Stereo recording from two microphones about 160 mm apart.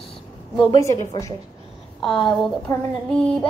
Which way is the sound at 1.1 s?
20° left (ahead or behind).